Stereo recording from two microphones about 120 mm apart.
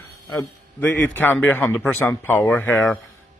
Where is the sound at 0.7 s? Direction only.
15° left (ahead or behind).